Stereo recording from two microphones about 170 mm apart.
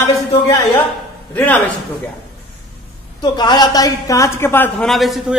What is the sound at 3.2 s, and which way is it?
A woman's voice, 25° left (ahead or behind).